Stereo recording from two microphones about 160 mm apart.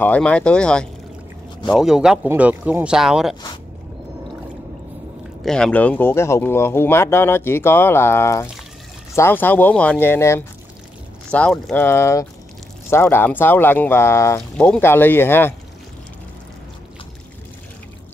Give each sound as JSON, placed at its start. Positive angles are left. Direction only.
{"t": 0.0, "sound": "speech", "side_deg": 10}
{"t": 5.4, "sound": "speech", "side_deg": 5}
{"t": 11.7, "sound": "speech", "side_deg": 15}